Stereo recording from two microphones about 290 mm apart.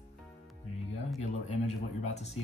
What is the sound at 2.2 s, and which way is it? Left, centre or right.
Speech, left.